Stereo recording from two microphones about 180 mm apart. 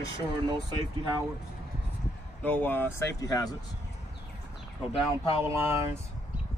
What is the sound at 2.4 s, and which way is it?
Speech, 10° left (ahead or behind).